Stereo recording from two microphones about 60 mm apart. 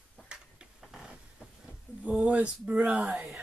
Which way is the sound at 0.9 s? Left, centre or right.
Centre.